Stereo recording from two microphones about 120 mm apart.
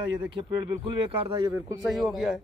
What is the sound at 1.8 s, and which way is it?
Speech, centre (ahead or behind).